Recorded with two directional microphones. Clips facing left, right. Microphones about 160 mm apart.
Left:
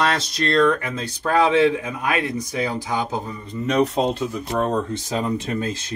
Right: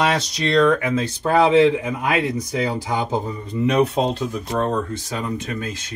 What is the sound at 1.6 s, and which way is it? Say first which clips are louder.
Speech: right 2 dB; 15° right (ahead or behind).